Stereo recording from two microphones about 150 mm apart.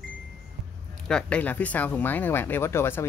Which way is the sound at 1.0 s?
5° left (ahead or behind).